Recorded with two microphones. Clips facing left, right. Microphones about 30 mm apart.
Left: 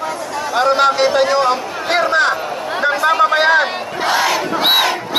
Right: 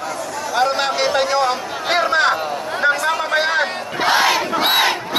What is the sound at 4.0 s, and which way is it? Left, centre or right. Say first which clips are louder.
Battle cry: right 1 dB; right.